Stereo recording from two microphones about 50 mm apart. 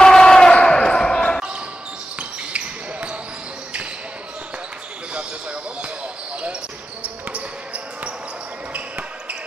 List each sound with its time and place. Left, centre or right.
0.0 s basketball bounce: centre
2.1 s basketball bounce: right
5.1 s basketball bounce: right
7.0 s basketball bounce: right